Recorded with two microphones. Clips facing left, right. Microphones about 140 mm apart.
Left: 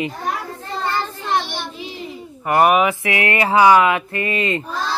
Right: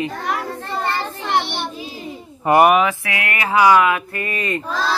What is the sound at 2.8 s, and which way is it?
Speech, 20° left (ahead or behind).